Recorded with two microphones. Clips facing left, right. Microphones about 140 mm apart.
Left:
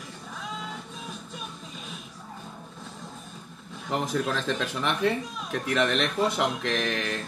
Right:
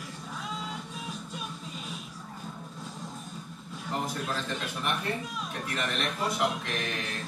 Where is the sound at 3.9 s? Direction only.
90° left.